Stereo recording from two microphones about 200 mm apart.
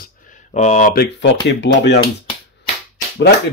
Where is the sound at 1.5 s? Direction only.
65° left (ahead or behind).